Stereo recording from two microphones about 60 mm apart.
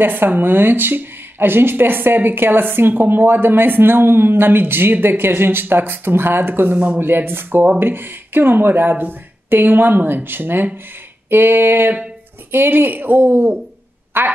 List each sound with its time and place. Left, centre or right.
0.0 s speech: right